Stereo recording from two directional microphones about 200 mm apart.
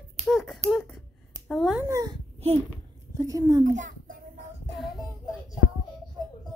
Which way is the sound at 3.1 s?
15° right (ahead or behind).